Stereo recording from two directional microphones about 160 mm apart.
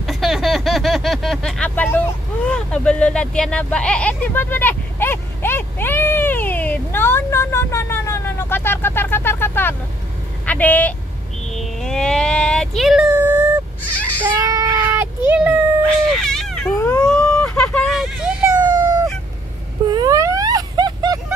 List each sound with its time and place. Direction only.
0.0 s vehicle: centre (ahead or behind)
10.4 s speech: 10° left (ahead or behind)
11.5 s a sound: centre (ahead or behind); by 15.0 s 20° right (ahead or behind)
15.2 s a sound: 10° right (ahead or behind)
16.2 s baby cry: 5° left (ahead or behind)
16.7 s cat: 15° left (ahead or behind)
17.0 s vehicle: 5° left (ahead or behind)
18.6 s a sound: 25° right (ahead or behind)
19.9 s vehicle: 25° right (ahead or behind)